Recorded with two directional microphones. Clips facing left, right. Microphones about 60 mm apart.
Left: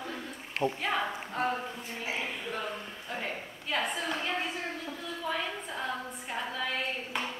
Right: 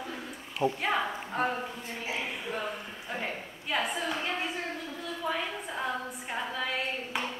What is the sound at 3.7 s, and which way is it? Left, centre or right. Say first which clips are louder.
Speech: right 1 dB; centre.